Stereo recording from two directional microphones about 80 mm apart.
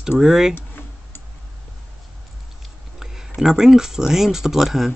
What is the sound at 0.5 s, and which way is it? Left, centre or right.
Tick-tock, left.